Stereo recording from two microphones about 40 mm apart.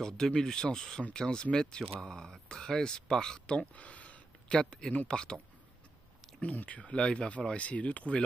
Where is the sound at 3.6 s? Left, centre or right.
Left.